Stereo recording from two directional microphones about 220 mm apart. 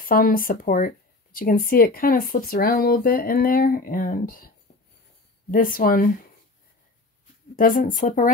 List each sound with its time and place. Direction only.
0.0 s speech: 40° left (ahead or behind)
5.5 s speech: 40° left (ahead or behind)
7.5 s speech: 40° left (ahead or behind)